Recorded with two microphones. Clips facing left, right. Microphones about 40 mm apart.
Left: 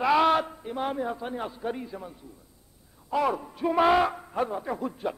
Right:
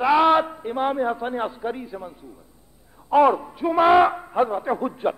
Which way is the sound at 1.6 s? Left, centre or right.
Centre.